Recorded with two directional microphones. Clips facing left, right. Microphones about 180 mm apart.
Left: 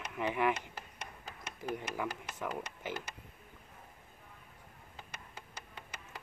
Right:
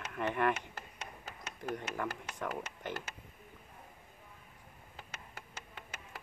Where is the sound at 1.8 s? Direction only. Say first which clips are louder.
Even; 5° left (ahead or behind).